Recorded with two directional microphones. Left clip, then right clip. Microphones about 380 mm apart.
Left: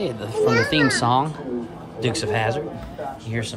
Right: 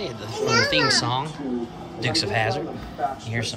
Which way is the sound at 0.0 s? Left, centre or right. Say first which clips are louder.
Left 6 dB; centre.